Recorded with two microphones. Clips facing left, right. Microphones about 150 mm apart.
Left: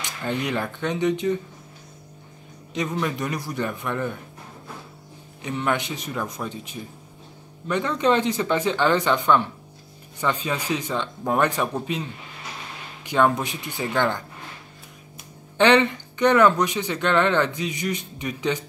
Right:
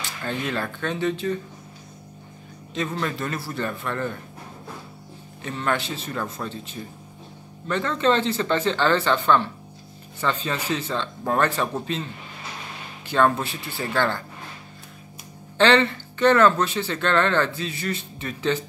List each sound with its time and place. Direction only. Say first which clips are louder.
0.0 s speech: left 2 dB; 15° left (ahead or behind)
2.7 s speech: left 1 dB; 15° left (ahead or behind)
5.4 s speech: left 1 dB; 15° left (ahead or behind)
15.5 s speech: left 1 dB; 15° left (ahead or behind)